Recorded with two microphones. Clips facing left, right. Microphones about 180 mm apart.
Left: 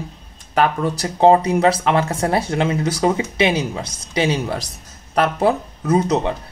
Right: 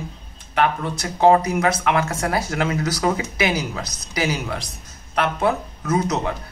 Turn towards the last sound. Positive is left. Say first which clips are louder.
# left 4 dB
turn(degrees=30)  # may be behind; listen again after turning